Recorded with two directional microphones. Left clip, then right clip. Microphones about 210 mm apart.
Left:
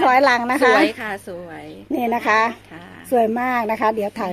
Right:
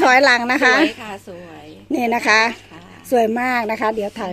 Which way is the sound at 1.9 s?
5° right (ahead or behind).